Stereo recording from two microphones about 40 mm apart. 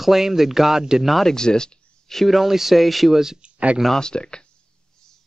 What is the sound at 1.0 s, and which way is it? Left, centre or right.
Speech, centre.